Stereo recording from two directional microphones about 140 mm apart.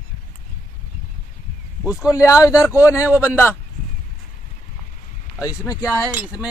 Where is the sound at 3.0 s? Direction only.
10° right (ahead or behind).